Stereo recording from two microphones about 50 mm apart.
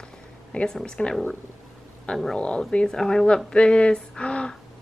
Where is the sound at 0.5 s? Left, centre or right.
Centre.